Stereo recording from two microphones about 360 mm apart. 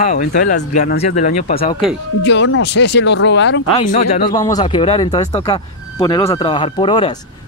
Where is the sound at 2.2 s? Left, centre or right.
Left.